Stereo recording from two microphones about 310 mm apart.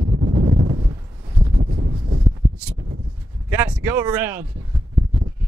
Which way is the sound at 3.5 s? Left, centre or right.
Centre.